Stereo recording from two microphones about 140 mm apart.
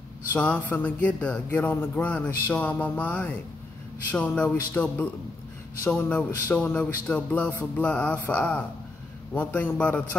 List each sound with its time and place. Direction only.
0.3 s speech: 10° left (ahead or behind)